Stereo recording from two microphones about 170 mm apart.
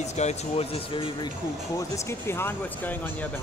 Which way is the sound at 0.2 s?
40° left (ahead or behind).